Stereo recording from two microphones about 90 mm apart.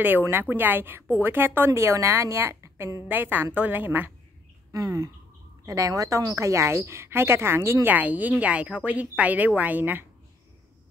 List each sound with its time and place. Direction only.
0.0 s a woman's voice: 20° right (ahead or behind)
4.7 s a woman's voice: 40° right (ahead or behind); by 10.0 s 20° right (ahead or behind)